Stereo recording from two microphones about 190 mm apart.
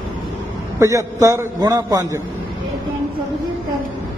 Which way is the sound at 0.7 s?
15° right (ahead or behind).